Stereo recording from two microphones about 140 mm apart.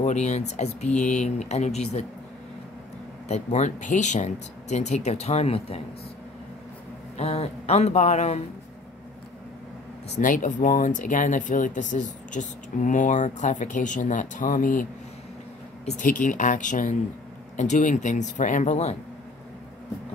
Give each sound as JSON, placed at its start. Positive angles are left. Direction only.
{"t": 0.0, "sound": "speech", "side_deg": 55}
{"t": 3.3, "sound": "speech", "side_deg": 50}
{"t": 7.2, "sound": "speech", "side_deg": 50}
{"t": 10.1, "sound": "speech", "side_deg": 70}
{"t": 15.8, "sound": "speech", "side_deg": 60}